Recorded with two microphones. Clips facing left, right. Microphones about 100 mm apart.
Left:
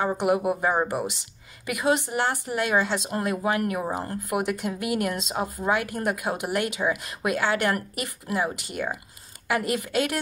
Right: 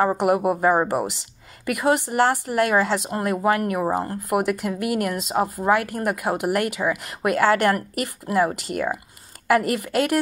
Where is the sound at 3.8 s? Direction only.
30° right (ahead or behind).